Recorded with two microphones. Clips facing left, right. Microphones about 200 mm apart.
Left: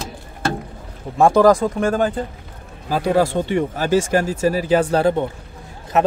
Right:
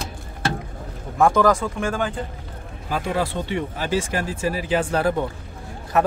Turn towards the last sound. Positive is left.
turn(degrees=20)  # may be behind; listen again after turning